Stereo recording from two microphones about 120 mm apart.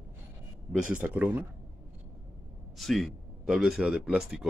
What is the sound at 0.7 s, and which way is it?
Speech, 10° right (ahead or behind).